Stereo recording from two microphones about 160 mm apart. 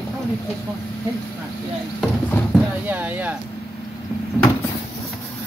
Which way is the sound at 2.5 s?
10° right (ahead or behind).